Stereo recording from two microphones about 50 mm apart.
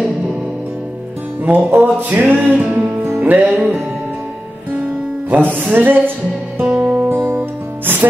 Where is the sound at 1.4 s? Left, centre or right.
Right.